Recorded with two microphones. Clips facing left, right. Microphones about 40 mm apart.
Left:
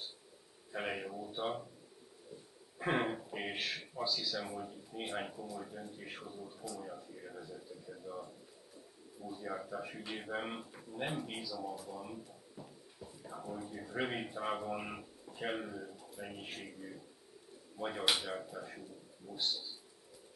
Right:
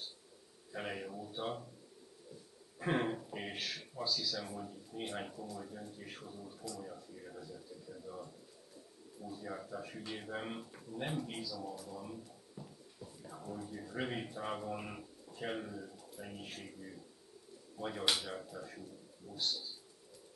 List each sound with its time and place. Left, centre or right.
0.7 s speech: centre
2.8 s speech: centre
9.3 s speech: centre